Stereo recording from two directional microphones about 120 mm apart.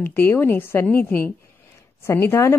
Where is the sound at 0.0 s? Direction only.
20° left (ahead or behind).